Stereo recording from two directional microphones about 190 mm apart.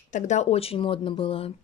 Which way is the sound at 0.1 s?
35° left (ahead or behind).